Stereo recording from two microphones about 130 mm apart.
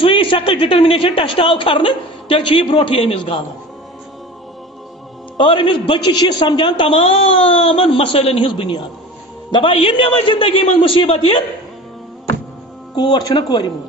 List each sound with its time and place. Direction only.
0.0 s a woman's voice: 40° left (ahead or behind)
5.4 s a woman's voice: 40° left (ahead or behind)
8.5 s a woman's voice: 35° left (ahead or behind)
12.9 s speech: 35° left (ahead or behind)